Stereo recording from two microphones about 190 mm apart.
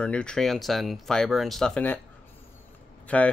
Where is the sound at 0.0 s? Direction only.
5° left (ahead or behind).